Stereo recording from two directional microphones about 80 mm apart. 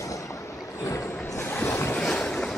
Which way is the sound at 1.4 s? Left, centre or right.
Left.